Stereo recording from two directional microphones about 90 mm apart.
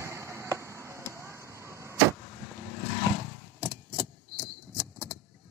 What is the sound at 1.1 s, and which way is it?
Vehicle, 30° right (ahead or behind).